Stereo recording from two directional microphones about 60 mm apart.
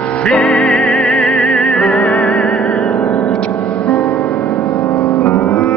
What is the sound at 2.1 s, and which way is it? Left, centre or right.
Music, left.